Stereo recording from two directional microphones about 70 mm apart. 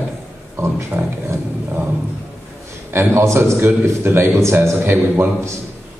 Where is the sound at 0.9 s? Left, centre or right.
Right.